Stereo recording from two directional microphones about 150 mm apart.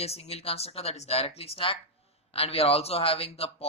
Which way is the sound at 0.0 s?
45° left (ahead or behind).